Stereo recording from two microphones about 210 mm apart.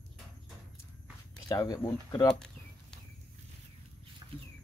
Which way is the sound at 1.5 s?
20° left (ahead or behind).